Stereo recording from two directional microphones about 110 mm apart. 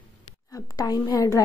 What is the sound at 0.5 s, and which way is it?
Speech, 30° left (ahead or behind).